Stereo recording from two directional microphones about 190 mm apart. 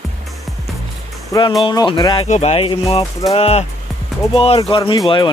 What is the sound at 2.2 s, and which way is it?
Speech, 35° left (ahead or behind).